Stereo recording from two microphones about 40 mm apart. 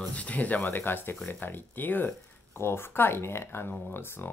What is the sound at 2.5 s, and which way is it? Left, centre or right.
Speech, left.